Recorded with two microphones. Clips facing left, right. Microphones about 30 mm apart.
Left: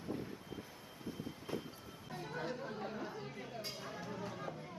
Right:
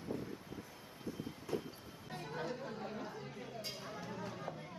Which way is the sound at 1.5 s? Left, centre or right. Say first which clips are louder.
Right 3 dB; centre.